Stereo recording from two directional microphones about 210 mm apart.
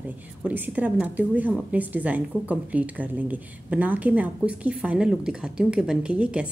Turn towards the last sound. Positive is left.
turn(degrees=-5)  # may be behind; listen again after turning